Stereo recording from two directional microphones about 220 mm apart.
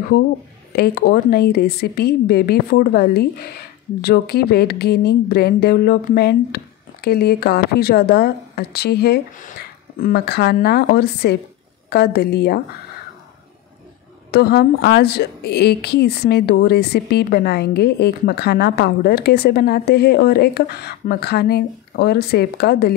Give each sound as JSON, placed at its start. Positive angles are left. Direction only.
{"t": 0.7, "sound": "a woman's voice", "side_deg": 45}
{"t": 14.3, "sound": "a woman's voice", "side_deg": 45}